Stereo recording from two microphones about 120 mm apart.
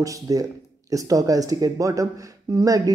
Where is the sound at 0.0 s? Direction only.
30° right (ahead or behind).